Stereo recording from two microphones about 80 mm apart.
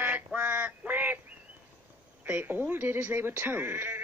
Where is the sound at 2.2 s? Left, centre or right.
Right.